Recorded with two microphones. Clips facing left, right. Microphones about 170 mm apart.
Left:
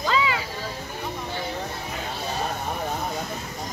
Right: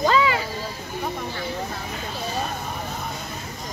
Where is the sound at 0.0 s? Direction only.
45° right (ahead or behind).